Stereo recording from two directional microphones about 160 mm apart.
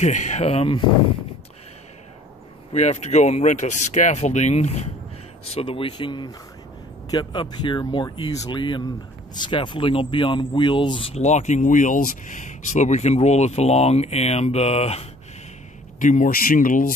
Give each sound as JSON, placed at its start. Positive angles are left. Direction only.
{"t": 0.0, "sound": "speech", "side_deg": 50}
{"t": 2.7, "sound": "speech", "side_deg": 45}
{"t": 16.0, "sound": "speech", "side_deg": 50}